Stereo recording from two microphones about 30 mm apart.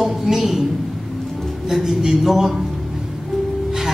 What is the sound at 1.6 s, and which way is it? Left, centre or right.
Speech, centre.